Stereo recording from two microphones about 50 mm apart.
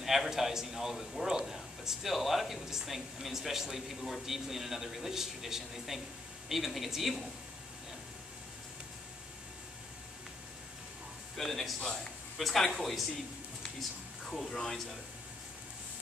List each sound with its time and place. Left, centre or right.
0.0 s a man's voice: centre
11.3 s speech: centre
11.8 s speech: centre
12.4 s speech: centre
14.3 s speech: centre